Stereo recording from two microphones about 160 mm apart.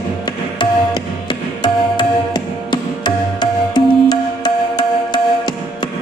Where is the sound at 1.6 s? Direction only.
25° left (ahead or behind).